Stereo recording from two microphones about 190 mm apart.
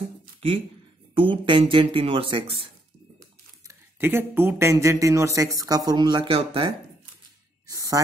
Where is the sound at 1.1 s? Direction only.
25° right (ahead or behind).